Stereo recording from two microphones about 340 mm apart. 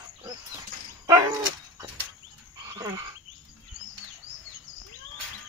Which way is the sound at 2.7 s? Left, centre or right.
Centre.